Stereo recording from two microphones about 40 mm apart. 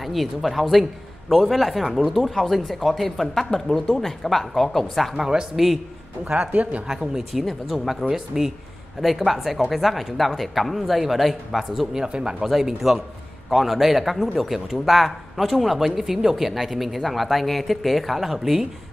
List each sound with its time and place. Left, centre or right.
0.0 s speech: centre
5.1 s speech: centre
6.5 s speech: right
6.9 s speech: centre
9.0 s speech: centre
12.0 s speech: right
12.4 s speech: centre